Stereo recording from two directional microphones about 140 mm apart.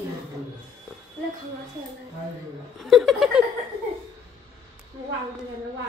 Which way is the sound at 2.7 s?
Centre (ahead or behind).